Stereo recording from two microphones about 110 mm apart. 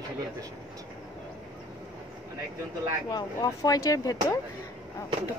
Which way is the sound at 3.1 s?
35° left (ahead or behind).